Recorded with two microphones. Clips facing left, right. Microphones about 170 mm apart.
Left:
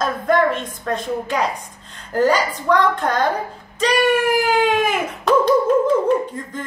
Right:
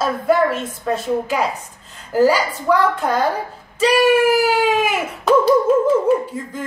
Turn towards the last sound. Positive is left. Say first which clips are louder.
# right 3 dB
turn(degrees=-5)  # may be behind; listen again after turning